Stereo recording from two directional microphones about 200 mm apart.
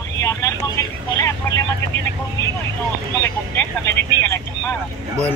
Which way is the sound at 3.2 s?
10° left (ahead or behind).